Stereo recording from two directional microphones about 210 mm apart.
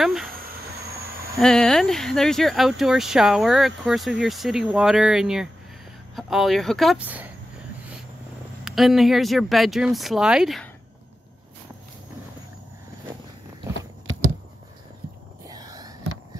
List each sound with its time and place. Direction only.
0.0 s speech: centre (ahead or behind)
1.4 s speech: 5° left (ahead or behind)
8.6 s speech: centre (ahead or behind)
14.1 s a sound: 65° right (ahead or behind)
15.4 s whispering: 20° right (ahead or behind)